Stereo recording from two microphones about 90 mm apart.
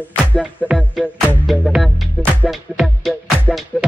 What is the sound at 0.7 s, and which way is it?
Music, centre (ahead or behind).